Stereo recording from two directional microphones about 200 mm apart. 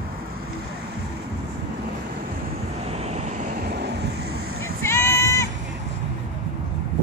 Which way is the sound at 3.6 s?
55° right (ahead or behind).